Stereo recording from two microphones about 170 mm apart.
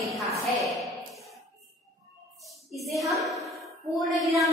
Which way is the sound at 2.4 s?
Centre (ahead or behind).